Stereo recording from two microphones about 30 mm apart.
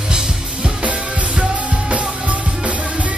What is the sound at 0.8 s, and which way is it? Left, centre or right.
Music, right.